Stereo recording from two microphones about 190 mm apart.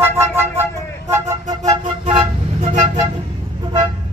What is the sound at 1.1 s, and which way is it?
Flute, 20° right (ahead or behind).